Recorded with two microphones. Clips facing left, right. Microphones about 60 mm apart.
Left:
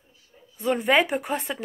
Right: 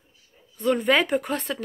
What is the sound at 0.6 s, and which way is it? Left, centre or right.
A woman's voice, centre.